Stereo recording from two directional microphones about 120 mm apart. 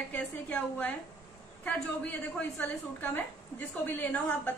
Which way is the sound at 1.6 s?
15° left (ahead or behind).